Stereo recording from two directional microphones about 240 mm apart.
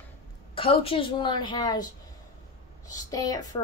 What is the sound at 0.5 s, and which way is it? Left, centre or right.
A woman's voice, left.